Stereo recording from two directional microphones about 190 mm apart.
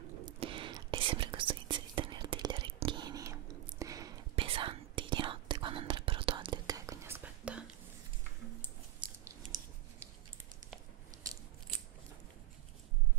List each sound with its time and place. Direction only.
0.2 s whispering: 25° right (ahead or behind)
4.4 s whispering: 30° right (ahead or behind); by 7.7 s 5° right (ahead or behind)
8.5 s a sound: 10° left (ahead or behind)